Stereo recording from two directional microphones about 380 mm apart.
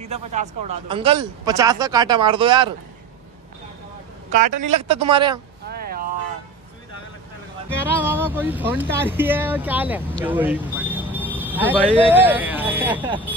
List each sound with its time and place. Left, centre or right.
0.0 s speech: centre
4.3 s speech: centre
5.7 s a sound: right
7.7 s speech: centre